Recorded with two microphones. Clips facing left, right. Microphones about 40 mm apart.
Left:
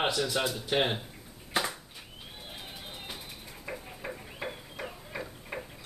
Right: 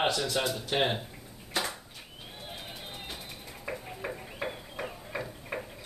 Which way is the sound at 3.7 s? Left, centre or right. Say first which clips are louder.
Right 3 dB; centre.